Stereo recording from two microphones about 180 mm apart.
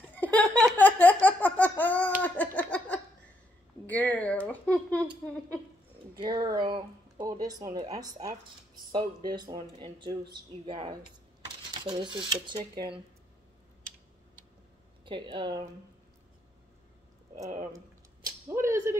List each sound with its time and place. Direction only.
0.1 s laughter: 10° left (ahead or behind)
2.2 s a sound: 10° left (ahead or behind)
3.8 s speech: 10° left (ahead or behind)
6.1 s speech: 25° right (ahead or behind)
15.0 s speech: 25° right (ahead or behind)
17.7 s a sound: 15° right (ahead or behind)